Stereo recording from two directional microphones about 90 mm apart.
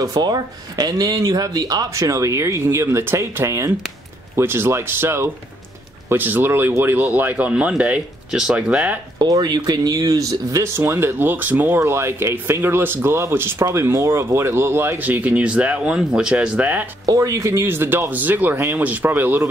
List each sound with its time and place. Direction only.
0.0 s speech: 45° right (ahead or behind); by 9.0 s 10° right (ahead or behind)
9.2 s speech: 45° right (ahead or behind); by 16.8 s 15° right (ahead or behind)
17.0 s speech: 40° right (ahead or behind); by 19.4 s 20° right (ahead or behind)